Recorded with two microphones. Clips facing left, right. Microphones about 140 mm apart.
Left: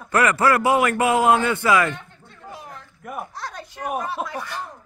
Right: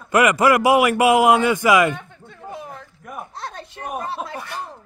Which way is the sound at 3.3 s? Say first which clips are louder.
Right 1 dB; 25° right (ahead or behind).